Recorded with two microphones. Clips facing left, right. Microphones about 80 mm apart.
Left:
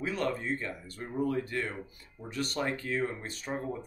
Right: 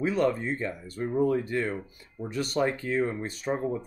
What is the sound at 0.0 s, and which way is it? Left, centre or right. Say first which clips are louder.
Speech: right 7 dB; centre.